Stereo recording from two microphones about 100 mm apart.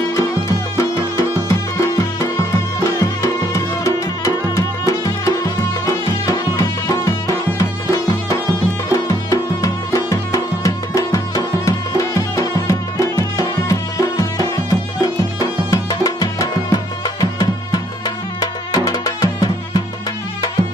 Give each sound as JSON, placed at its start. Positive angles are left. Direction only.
{"t": 0.1, "sound": "music", "side_deg": 30}